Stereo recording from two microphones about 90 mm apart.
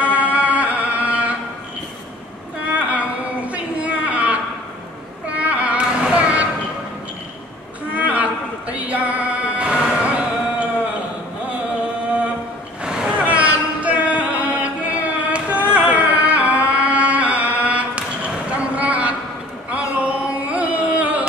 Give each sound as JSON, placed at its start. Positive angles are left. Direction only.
{"t": 0.0, "sound": "music", "side_deg": -15}
{"t": 2.6, "sound": "a sound", "side_deg": -15}
{"t": 5.3, "sound": "child singing", "side_deg": -15}
{"t": 7.9, "sound": "music", "side_deg": -15}
{"t": 12.8, "sound": "a sound", "side_deg": -10}
{"t": 19.7, "sound": "carnatic music", "side_deg": -15}